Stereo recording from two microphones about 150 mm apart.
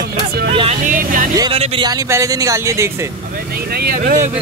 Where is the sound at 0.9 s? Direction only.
65° right (ahead or behind).